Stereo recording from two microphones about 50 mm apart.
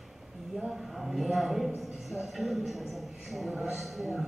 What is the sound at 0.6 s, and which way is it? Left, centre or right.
A man's voice, centre.